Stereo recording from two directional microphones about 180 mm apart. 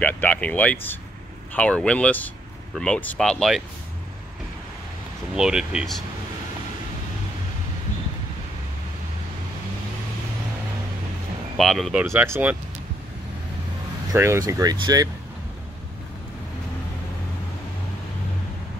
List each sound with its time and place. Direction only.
0.0 s speech: 10° left (ahead or behind)
5.3 s speech: 5° right (ahead or behind)
11.5 s speech: centre (ahead or behind)
14.1 s speech: 15° right (ahead or behind)